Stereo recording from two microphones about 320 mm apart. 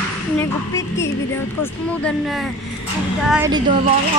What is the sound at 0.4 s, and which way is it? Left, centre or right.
Speech, centre.